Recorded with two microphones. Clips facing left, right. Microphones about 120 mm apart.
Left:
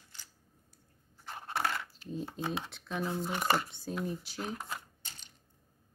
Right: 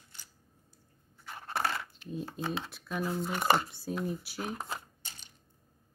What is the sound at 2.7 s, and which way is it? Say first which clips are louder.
Speech: right 1 dB; 5° right (ahead or behind).